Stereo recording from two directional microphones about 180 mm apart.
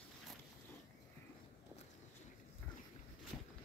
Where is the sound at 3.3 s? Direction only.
5° left (ahead or behind).